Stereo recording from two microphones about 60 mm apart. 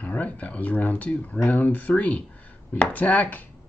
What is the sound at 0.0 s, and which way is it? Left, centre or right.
Speech, left.